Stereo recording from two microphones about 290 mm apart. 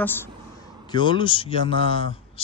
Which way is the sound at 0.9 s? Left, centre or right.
Centre.